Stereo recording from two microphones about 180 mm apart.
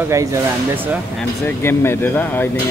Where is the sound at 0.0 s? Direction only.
15° right (ahead or behind).